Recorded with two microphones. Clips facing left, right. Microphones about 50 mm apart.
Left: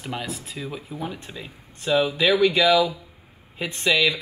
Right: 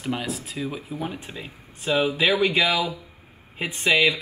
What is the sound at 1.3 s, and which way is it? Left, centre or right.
Speech, right.